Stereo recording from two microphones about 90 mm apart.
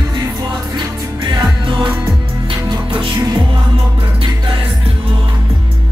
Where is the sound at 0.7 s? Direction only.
55° right (ahead or behind).